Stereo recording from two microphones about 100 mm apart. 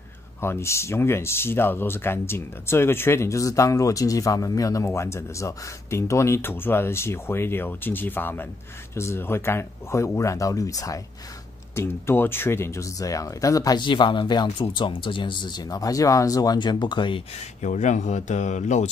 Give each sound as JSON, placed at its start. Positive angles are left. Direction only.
{"t": 0.4, "sound": "speech", "side_deg": 25}
{"t": 11.7, "sound": "speech", "side_deg": 25}
{"t": 13.7, "sound": "speech", "side_deg": 55}
{"t": 16.5, "sound": "speech", "side_deg": 50}